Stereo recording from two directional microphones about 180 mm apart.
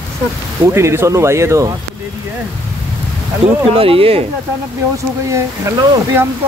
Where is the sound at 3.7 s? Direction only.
30° right (ahead or behind).